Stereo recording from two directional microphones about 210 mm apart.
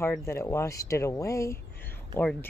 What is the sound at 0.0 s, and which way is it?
Speech, 10° left (ahead or behind).